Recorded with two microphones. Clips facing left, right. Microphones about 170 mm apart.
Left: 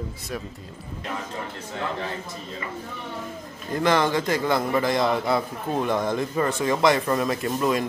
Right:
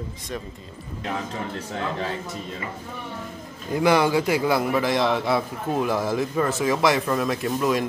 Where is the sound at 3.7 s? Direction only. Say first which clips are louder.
Right 2 dB; 10° right (ahead or behind).